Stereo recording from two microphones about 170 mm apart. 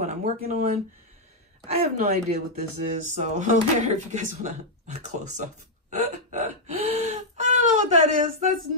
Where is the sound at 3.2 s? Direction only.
45° right (ahead or behind).